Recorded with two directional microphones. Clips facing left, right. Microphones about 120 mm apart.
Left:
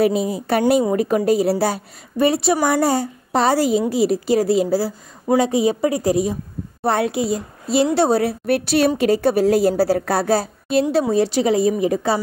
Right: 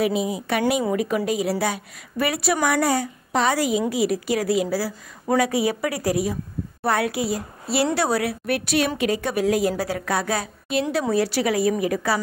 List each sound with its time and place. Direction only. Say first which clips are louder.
0.0 s a woman's voice: left 4 dB; 40° left (ahead or behind)